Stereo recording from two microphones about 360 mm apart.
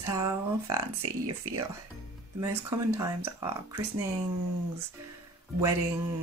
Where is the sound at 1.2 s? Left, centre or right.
Right.